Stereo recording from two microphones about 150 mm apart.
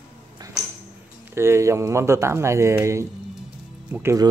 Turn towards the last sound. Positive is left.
turn(degrees=-15)  # may be behind; listen again after turning